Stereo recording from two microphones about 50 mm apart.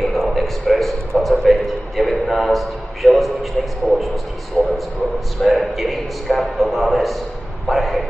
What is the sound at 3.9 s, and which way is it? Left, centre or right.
Heart sounds, centre.